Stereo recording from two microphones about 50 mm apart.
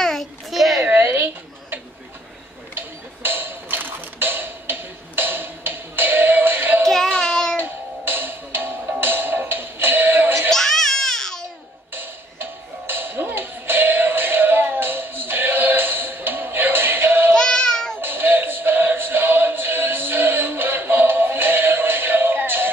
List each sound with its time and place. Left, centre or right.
0.0 s a sound: centre
0.8 s a sound: right
6.9 s child singing: centre
7.5 s music: right
10.5 s baby cry: centre
11.9 s music: right
17.3 s child singing: centre
18.0 s music: right